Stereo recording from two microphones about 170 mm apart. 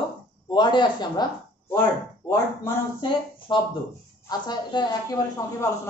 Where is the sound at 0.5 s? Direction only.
25° left (ahead or behind).